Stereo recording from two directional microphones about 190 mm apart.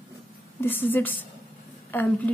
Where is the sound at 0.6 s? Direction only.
10° left (ahead or behind).